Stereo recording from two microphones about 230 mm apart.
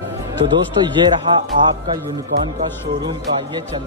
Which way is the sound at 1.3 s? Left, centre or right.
Centre.